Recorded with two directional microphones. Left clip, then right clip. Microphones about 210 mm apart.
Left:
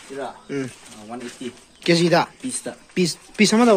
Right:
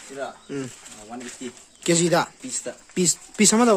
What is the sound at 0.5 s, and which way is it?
Speech, 15° right (ahead or behind).